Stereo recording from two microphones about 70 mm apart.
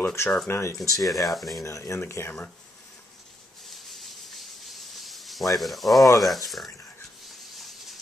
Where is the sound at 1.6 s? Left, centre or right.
Left.